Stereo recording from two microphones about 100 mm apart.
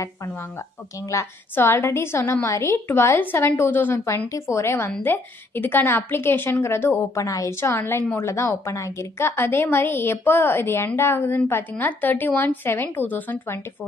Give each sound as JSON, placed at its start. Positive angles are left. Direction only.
{"t": 1.5, "sound": "a woman's voice", "side_deg": 20}